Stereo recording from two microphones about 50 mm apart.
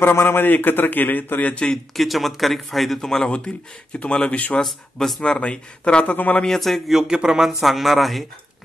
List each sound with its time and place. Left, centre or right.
0.0 s a man's voice: left
1.5 s speech: centre
2.0 s a man's voice: centre; by 4.6 s left
4.9 s a man's voice: centre
5.2 s speech: centre
6.1 s a man's voice: left
6.4 s speech: centre
6.9 s speech: centre